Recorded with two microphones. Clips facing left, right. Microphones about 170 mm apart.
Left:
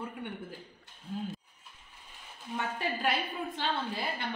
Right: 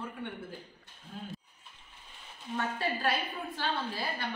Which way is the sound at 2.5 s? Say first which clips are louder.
Right 1 dB; 20° left (ahead or behind).